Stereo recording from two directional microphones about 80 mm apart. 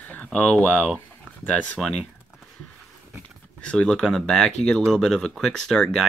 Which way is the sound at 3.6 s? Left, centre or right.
Centre.